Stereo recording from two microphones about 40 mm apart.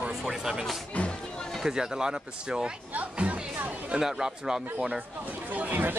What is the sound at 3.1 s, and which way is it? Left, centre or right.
Music, right.